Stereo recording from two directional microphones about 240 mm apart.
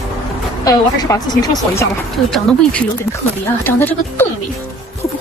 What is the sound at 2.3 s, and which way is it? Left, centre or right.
Speech, centre.